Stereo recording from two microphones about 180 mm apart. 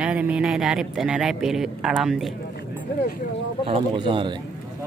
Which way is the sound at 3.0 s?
50° left (ahead or behind).